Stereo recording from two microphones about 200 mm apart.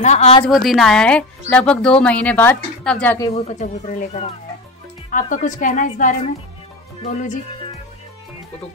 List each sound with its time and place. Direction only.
0.0 s a woman's voice: 35° left (ahead or behind)
0.5 s speech: centre (ahead or behind)
3.3 s a woman's voice: 30° left (ahead or behind)